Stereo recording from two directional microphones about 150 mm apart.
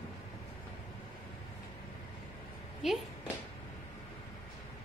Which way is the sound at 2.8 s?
Centre (ahead or behind).